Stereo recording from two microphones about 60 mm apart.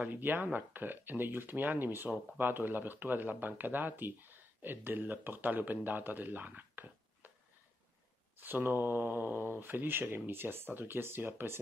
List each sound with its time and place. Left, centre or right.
0.0 s speech: right
8.4 s speech: right